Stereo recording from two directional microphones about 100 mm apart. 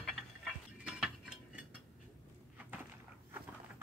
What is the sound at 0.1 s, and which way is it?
Tick-tock, 5° right (ahead or behind).